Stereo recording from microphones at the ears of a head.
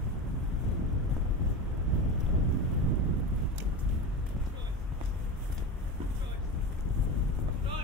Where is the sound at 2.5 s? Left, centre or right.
Right.